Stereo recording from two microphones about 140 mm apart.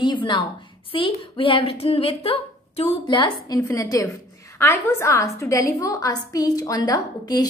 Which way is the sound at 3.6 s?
25° left (ahead or behind).